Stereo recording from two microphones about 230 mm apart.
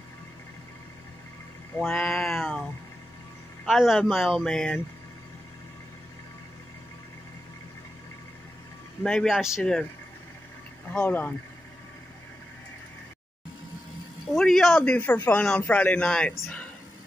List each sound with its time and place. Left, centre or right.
1.8 s a sound: centre
3.6 s a man's voice: centre
9.0 s a man's voice: centre
10.9 s speech: centre
14.3 s a man's voice: centre